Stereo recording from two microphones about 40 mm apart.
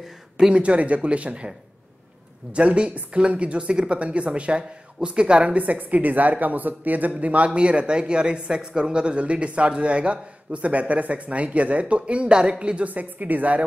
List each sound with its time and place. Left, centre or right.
0.6 s speech: right
2.5 s speech: right
5.5 s speech: right